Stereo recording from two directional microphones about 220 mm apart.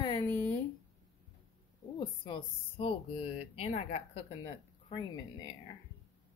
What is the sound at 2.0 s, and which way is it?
Speech, 20° left (ahead or behind).